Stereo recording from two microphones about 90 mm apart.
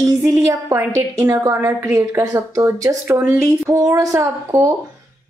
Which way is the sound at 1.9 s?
40° right (ahead or behind).